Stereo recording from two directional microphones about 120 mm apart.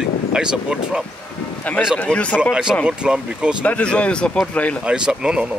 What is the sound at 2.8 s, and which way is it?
Speech, 5° right (ahead or behind).